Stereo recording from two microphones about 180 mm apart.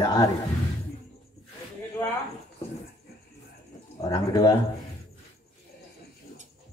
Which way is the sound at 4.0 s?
20° left (ahead or behind).